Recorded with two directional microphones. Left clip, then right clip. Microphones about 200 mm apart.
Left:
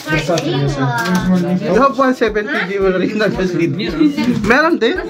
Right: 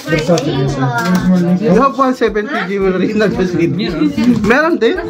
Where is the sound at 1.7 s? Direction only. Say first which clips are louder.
Even; 15° right (ahead or behind).